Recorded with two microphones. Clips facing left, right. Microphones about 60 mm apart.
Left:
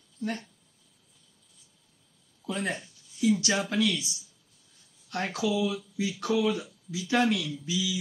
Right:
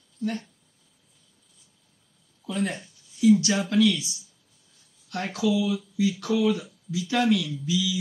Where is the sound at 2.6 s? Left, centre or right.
Left.